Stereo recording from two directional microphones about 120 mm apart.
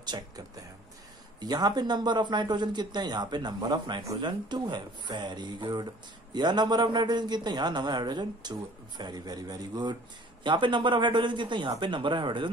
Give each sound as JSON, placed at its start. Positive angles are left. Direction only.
{"t": 0.1, "sound": "a man's voice", "side_deg": -35}
{"t": 1.4, "sound": "a man's voice", "side_deg": -35}